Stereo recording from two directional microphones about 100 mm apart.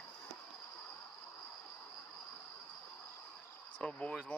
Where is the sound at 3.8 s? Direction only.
10° left (ahead or behind).